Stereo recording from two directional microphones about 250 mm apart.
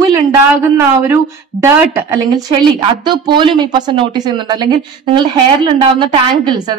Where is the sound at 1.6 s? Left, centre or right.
Centre.